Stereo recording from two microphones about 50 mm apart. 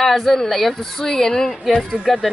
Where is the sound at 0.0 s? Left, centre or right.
Centre.